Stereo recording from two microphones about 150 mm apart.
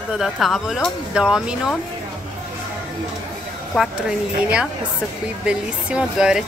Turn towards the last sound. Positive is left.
turn(degrees=-5)  # may be behind; listen again after turning